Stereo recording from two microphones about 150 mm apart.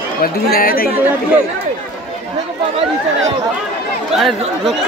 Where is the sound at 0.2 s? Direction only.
75° left (ahead or behind).